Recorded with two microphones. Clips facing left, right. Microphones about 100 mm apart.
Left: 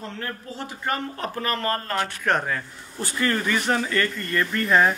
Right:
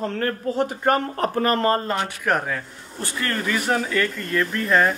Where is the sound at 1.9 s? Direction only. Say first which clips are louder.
Right 1 dB; 10° right (ahead or behind).